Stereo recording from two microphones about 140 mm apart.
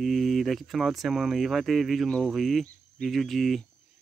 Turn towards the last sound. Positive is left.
turn(degrees=0)  # may be behind; listen again after turning